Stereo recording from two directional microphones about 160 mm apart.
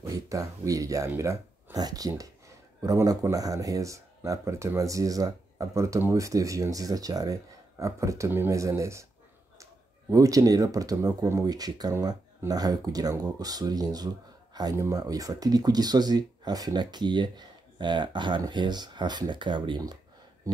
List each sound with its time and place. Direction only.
0.0 s speech: 20° right (ahead or behind)
10.1 s speech: 20° right (ahead or behind)